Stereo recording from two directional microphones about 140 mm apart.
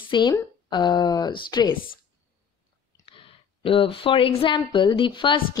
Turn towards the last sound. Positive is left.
turn(degrees=35)  # may be behind; listen again after turning